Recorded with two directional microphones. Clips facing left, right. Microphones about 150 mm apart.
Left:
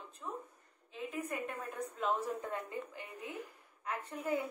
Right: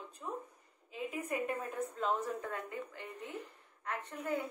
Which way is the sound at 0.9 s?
5° right (ahead or behind).